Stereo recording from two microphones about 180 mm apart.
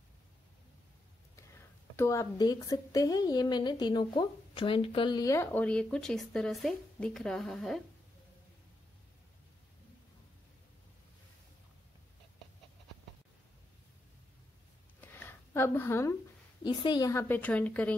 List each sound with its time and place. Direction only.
1.3 s speech: 15° left (ahead or behind)
15.0 s a sound: 10° left (ahead or behind)
16.6 s speech: 25° left (ahead or behind); by 17.9 s 10° left (ahead or behind)